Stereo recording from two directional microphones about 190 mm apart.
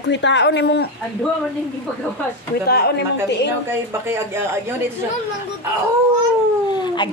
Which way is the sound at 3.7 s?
15° right (ahead or behind).